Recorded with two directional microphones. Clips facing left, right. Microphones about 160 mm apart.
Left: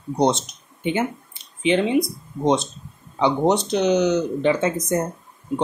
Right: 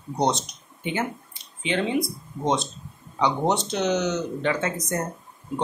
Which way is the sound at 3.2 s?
20° left (ahead or behind).